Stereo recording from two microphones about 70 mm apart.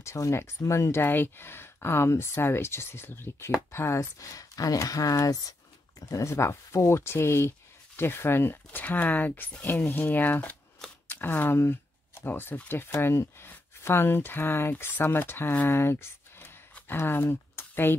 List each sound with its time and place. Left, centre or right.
0.0 s speech: left
1.0 s speech: left
6.3 s speech: left
11.1 s a sound: left
12.3 s speech: left